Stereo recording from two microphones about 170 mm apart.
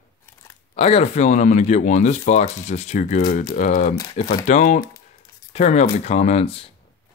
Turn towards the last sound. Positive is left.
turn(degrees=35)  # may be behind; listen again after turning